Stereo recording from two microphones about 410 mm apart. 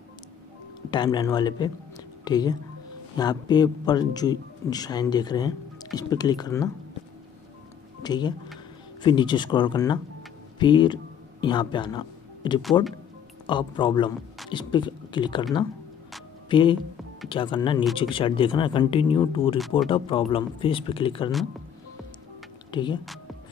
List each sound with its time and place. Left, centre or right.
0.8 s speech: centre
8.0 s speech: centre
16.4 s speech: centre
22.7 s speech: centre